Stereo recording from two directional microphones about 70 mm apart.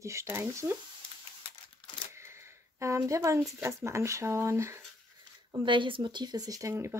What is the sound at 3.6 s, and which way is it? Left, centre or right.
Speech, right.